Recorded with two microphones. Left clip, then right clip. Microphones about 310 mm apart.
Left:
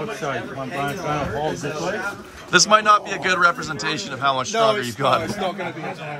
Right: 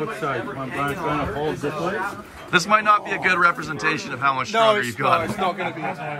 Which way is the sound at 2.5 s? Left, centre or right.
Centre.